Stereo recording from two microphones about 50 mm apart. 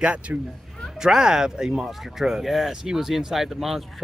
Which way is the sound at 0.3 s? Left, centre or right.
Right.